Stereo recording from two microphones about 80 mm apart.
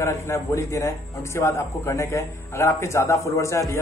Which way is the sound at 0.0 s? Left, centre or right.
Left.